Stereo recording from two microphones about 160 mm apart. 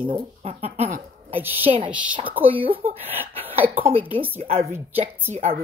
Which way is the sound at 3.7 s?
35° right (ahead or behind).